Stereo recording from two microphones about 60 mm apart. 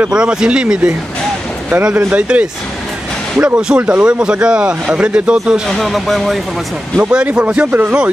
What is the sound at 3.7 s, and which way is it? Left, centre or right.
Speech, right.